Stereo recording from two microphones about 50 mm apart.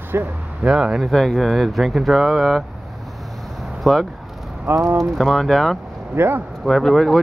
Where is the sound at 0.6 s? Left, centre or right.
Centre.